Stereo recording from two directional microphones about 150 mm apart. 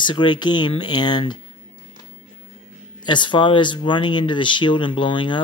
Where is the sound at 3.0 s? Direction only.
30° left (ahead or behind).